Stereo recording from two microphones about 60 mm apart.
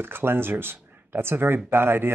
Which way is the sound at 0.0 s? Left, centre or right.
Right.